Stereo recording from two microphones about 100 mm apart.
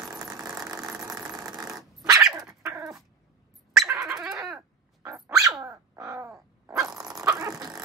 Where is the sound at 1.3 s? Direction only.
40° right (ahead or behind).